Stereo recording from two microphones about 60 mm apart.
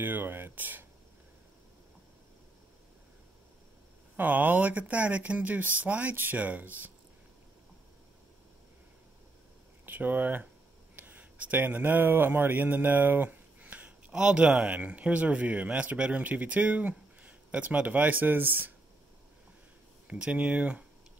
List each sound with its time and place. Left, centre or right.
0.0 s speech: right
4.2 s speech: right
9.8 s speech: right
11.0 s a sound: right
14.1 s speech: centre; by 18.7 s right
20.1 s speech: centre